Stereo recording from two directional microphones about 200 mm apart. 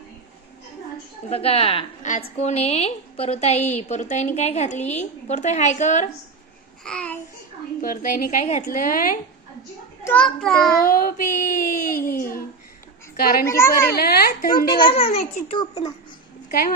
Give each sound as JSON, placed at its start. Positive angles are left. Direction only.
{"t": 1.3, "sound": "a child's voice", "side_deg": 30}
{"t": 2.0, "sound": "child singing", "side_deg": 45}
{"t": 2.3, "sound": "a woman's voice", "side_deg": 30}
{"t": 6.8, "sound": "babbling", "side_deg": 5}
{"t": 7.8, "sound": "a woman's voice", "side_deg": 45}
{"t": 10.0, "sound": "a child's voice", "side_deg": 5}
{"t": 10.8, "sound": "child singing", "side_deg": 45}
{"t": 13.1, "sound": "a woman's voice", "side_deg": 50}
{"t": 13.5, "sound": "a woman's voice", "side_deg": 15}
{"t": 13.9, "sound": "child singing", "side_deg": 50}
{"t": 14.9, "sound": "a child's voice", "side_deg": 30}
{"t": 16.4, "sound": "a woman's voice", "side_deg": 45}